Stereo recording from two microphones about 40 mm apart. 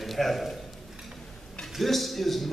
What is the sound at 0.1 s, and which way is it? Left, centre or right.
Speech, centre.